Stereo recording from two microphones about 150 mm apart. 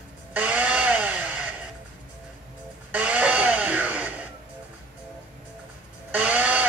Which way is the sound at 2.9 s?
10° right (ahead or behind).